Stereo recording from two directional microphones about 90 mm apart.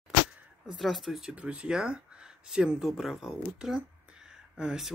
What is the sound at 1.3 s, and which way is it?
Speech, 10° right (ahead or behind).